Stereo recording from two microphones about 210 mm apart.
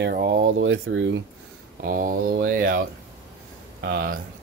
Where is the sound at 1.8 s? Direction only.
40° right (ahead or behind).